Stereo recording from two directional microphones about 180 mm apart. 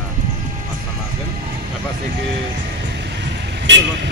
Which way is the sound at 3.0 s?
75° right (ahead or behind).